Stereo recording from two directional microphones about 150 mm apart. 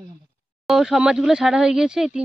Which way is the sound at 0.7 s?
Centre (ahead or behind).